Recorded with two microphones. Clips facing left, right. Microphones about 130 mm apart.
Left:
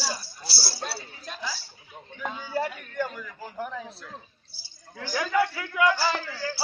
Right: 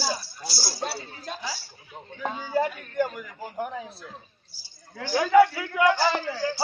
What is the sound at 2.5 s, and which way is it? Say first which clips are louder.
A man's voice: right 4 dB; 15° right (ahead or behind).